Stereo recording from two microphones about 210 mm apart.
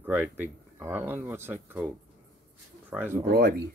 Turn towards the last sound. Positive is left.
turn(degrees=-45)  # may be behind; listen again after turning